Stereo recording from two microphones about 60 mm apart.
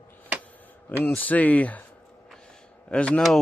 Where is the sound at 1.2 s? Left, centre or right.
Left.